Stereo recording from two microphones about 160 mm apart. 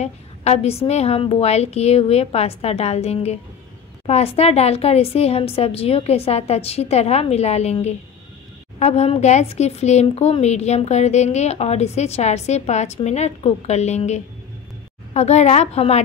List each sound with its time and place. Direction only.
0.0 s a woman's voice: 40° left (ahead or behind)